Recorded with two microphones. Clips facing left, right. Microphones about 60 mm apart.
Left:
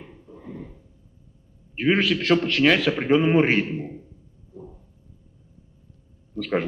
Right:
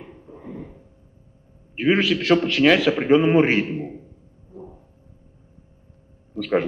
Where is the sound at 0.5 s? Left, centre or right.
Centre.